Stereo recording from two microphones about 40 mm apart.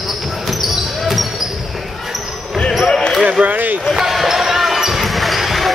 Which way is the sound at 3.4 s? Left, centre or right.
Right.